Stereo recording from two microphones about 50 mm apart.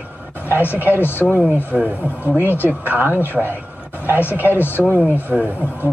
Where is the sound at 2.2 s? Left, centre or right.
Right.